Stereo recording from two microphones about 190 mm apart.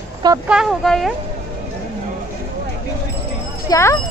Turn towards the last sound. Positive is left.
turn(degrees=15)  # may be behind; listen again after turning